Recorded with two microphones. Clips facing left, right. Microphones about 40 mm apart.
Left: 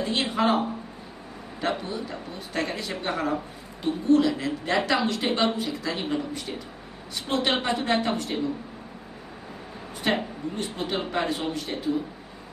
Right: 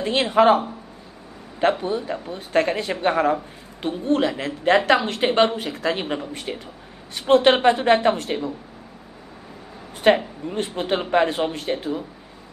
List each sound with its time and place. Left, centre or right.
0.0 s a woman's voice: right
1.6 s a woman's voice: right
10.1 s a woman's voice: right